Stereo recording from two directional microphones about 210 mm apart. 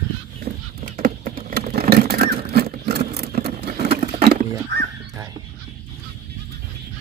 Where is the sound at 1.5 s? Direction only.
45° right (ahead or behind).